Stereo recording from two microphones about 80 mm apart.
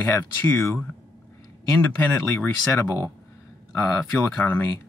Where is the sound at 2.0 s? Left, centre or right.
Left.